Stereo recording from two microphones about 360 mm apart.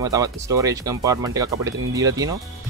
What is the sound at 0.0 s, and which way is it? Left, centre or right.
Speech, centre.